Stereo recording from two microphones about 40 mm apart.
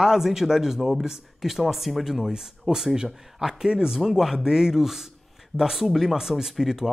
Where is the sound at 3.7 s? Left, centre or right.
Centre.